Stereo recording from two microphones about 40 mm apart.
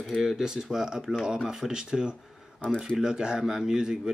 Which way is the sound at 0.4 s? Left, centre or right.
Centre.